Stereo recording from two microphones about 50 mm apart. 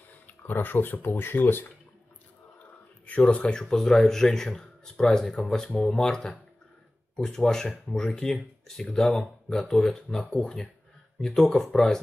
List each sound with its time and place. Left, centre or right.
0.4 s speech: left
3.1 s speech: left
3.6 s speech: centre
5.5 s speech: left
5.9 s speech: centre